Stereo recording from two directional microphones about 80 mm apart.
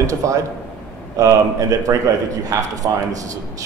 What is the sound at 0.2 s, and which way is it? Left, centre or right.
Speech, right.